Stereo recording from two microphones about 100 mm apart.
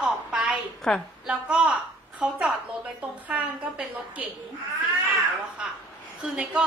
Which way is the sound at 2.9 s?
15° right (ahead or behind).